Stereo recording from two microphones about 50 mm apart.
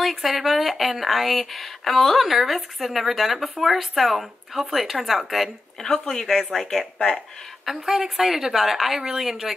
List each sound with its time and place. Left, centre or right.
0.0 s a woman's voice: centre
7.7 s a woman's voice: centre